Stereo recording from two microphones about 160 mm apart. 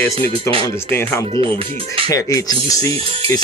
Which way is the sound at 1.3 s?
35° right (ahead or behind).